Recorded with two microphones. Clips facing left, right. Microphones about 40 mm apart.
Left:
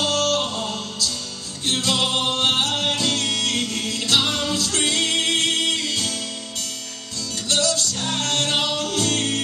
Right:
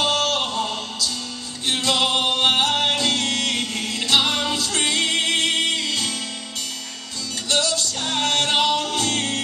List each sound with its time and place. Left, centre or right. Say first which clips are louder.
0.0 s music: even; right
2.7 s music: right 2 dB; right
7.4 s music: even; right